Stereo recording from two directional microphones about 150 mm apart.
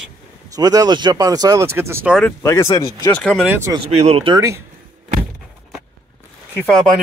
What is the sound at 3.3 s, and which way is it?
Speech, 10° right (ahead or behind).